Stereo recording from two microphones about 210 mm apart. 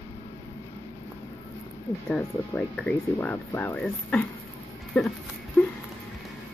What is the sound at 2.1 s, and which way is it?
Speech, 5° left (ahead or behind).